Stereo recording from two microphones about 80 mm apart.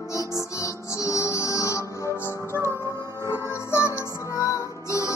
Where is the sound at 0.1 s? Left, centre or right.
Left.